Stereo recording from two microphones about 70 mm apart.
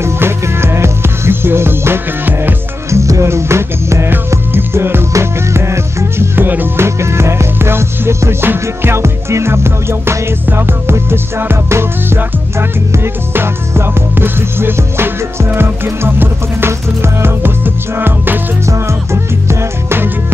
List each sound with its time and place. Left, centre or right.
0.0 s music: right
2.9 s music: right
6.3 s music: right
7.0 s music: right
19.4 s music: right